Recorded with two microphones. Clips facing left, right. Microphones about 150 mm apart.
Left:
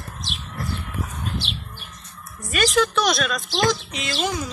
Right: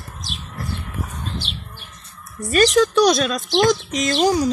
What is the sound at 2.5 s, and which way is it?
A woman's voice, 40° right (ahead or behind).